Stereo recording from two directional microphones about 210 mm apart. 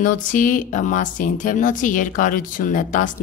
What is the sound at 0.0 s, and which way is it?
Speech, 40° left (ahead or behind).